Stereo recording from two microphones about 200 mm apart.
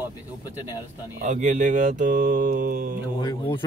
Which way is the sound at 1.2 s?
40° right (ahead or behind).